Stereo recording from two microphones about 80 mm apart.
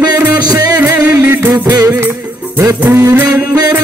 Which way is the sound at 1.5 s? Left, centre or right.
Right.